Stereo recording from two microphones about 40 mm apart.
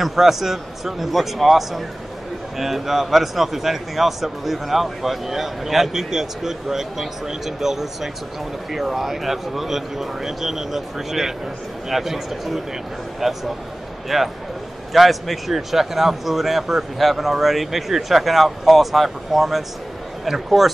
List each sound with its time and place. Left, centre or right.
0.0 s speech: centre